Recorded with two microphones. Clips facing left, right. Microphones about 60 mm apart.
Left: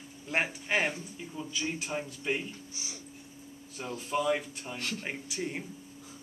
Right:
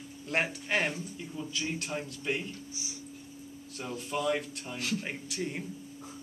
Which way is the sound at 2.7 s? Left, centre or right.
Left.